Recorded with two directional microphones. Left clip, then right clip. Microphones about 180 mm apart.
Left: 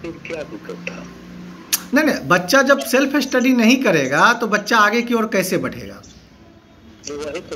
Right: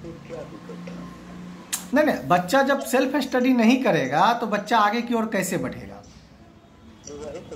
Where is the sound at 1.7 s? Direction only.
Centre (ahead or behind).